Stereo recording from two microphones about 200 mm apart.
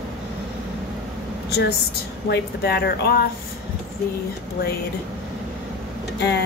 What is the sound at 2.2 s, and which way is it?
Speech, 55° left (ahead or behind).